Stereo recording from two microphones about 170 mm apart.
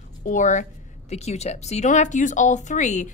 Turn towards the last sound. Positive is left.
turn(degrees=45)  # may be behind; listen again after turning